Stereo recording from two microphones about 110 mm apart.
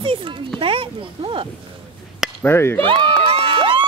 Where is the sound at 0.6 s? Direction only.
50° right (ahead or behind).